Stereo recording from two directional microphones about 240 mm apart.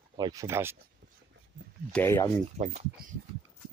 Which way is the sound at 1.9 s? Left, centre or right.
Centre.